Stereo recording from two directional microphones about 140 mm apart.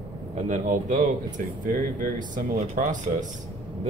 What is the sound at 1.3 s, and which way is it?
Speech, 75° right (ahead or behind).